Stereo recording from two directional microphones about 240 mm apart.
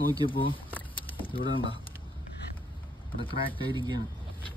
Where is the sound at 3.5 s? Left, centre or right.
Centre.